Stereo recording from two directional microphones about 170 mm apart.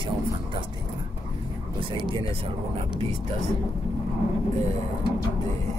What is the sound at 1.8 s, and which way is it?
Speech, 30° right (ahead or behind).